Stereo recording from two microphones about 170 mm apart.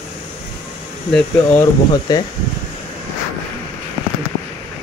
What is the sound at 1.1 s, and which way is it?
Speech, 5° left (ahead or behind).